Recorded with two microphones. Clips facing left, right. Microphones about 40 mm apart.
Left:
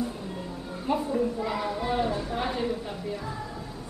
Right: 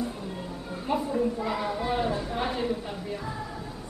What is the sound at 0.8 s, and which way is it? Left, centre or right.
A child's voice, centre.